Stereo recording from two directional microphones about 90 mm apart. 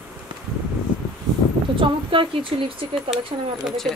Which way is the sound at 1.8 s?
75° right (ahead or behind).